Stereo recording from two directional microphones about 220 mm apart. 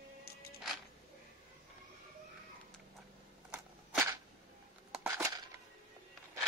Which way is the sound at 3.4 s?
5° right (ahead or behind).